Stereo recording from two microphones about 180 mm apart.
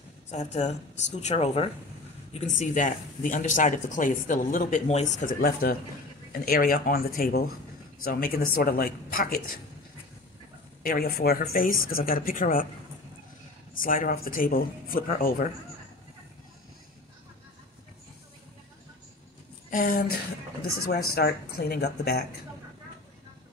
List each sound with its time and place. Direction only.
0.3 s speech: 40° left (ahead or behind)
5.4 s speech: 55° left (ahead or behind)
10.8 s speech: 55° left (ahead or behind)
13.7 s speech: 50° left (ahead or behind)
19.7 s speech: 50° left (ahead or behind)